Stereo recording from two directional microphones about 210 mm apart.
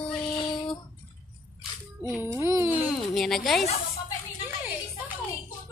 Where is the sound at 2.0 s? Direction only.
10° right (ahead or behind).